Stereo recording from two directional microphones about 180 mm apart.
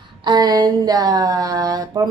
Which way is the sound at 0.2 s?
25° right (ahead or behind).